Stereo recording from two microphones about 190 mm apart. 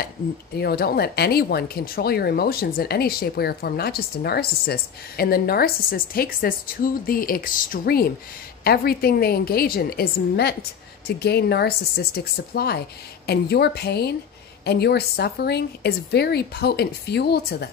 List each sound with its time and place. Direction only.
0.6 s a woman's voice: 55° left (ahead or behind)